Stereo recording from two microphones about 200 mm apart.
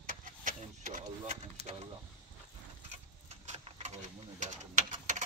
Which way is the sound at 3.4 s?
35° right (ahead or behind).